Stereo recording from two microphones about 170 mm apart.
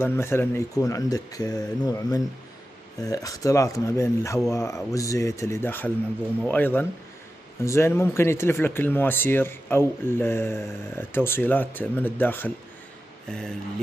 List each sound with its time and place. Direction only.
0.0 s speech: 15° left (ahead or behind)